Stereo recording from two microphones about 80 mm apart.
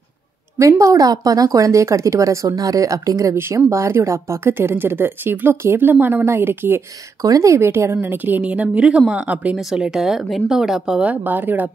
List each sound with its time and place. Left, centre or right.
0.6 s speech: right
3.3 s speech: right
7.2 s a woman's voice: right; by 9.6 s centre
9.6 s speech: centre
11.0 s a woman's voice: centre